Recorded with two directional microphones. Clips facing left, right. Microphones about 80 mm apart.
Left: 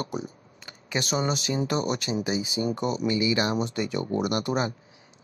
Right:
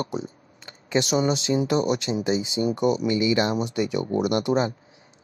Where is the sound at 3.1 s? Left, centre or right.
Right.